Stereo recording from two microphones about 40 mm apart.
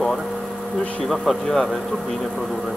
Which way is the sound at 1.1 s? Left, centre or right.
Centre.